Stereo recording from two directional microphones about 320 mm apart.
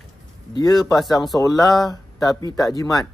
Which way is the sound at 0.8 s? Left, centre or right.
Centre.